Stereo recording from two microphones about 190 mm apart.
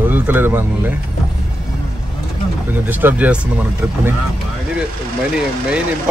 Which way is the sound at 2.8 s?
10° right (ahead or behind).